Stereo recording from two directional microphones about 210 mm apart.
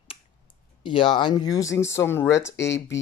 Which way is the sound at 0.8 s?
25° left (ahead or behind).